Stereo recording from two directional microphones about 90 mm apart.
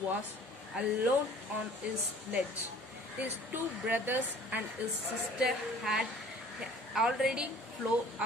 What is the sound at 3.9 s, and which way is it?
Speech, 20° right (ahead or behind).